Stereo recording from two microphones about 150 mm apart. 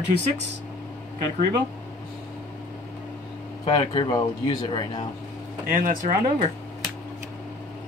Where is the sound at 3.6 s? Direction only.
30° left (ahead or behind).